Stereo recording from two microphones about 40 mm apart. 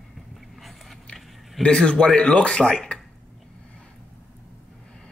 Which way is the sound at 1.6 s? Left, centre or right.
Centre.